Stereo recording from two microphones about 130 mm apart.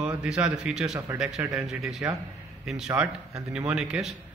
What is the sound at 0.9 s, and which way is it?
Speech, 25° right (ahead or behind).